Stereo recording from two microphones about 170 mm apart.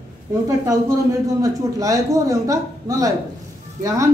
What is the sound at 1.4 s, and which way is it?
A man's voice, 20° right (ahead or behind).